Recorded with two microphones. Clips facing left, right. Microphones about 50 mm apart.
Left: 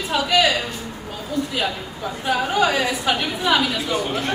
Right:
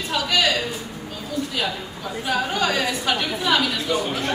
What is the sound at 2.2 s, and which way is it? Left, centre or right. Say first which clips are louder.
Speech: left 3 dB; centre.